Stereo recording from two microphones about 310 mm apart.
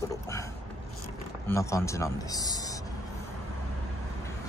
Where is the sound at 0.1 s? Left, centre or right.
Centre.